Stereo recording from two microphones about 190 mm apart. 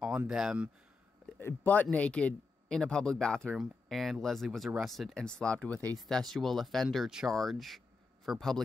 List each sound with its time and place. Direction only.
0.0 s speech: 5° right (ahead or behind)
1.2 s speech: 10° left (ahead or behind)